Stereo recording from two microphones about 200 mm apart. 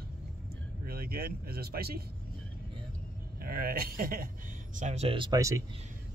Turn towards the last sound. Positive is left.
turn(degrees=-15)  # may be behind; listen again after turning